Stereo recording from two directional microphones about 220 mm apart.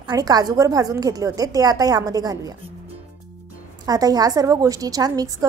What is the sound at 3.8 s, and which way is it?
A woman's voice, 15° right (ahead or behind).